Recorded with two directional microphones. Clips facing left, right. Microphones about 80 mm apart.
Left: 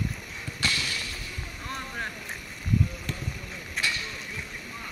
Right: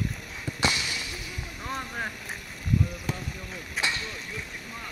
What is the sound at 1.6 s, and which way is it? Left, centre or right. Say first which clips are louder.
Boat: right 2 dB; centre.